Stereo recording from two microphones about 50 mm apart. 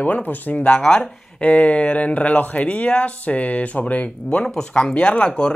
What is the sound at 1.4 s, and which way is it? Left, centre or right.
Speech, left.